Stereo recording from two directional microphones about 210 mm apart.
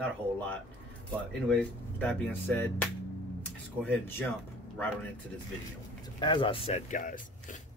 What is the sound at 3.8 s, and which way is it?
Speech, 10° left (ahead or behind).